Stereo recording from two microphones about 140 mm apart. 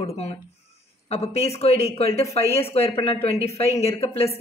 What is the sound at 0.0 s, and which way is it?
A woman's voice, 50° left (ahead or behind).